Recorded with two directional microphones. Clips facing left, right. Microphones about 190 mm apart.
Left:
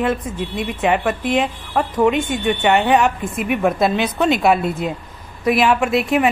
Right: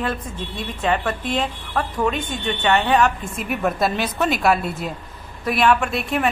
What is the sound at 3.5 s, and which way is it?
A woman's voice, 5° left (ahead or behind).